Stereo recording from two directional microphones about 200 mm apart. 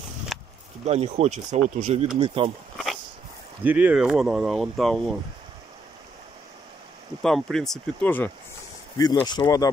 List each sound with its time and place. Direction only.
0.3 s a sound: centre (ahead or behind)
0.8 s speech: 30° right (ahead or behind)
3.6 s speech: 5° right (ahead or behind)
7.2 s speech: centre (ahead or behind)
8.9 s speech: 20° left (ahead or behind)